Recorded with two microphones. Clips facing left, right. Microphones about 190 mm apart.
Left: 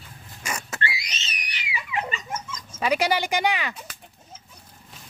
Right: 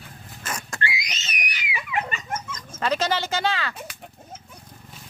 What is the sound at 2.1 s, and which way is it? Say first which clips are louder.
Dog: right 1 dB; 55° right (ahead or behind).